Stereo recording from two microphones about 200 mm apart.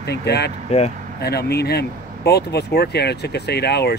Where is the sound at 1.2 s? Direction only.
55° left (ahead or behind).